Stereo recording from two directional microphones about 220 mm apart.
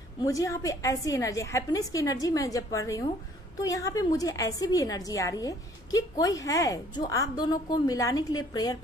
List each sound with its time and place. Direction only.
0.2 s a woman's voice: 15° left (ahead or behind)